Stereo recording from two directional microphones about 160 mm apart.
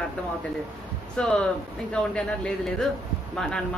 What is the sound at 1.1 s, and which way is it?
Speech, 5° left (ahead or behind).